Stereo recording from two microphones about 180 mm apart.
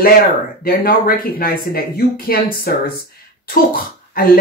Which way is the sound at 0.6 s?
55° left (ahead or behind).